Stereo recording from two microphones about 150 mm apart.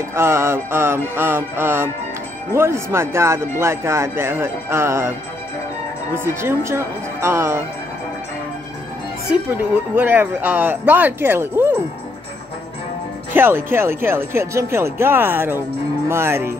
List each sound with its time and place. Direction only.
0.1 s speech: 15° right (ahead or behind)
6.1 s speech: 15° right (ahead or behind)
9.5 s speech: 10° right (ahead or behind)
13.3 s speech: 15° right (ahead or behind)